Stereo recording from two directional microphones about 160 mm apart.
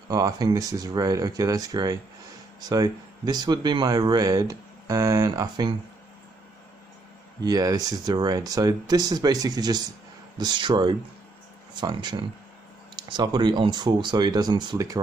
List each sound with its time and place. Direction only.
0.1 s speech: 25° right (ahead or behind)
7.4 s speech: 25° right (ahead or behind)